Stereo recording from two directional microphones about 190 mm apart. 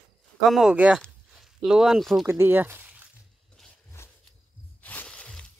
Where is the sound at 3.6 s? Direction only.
Centre (ahead or behind).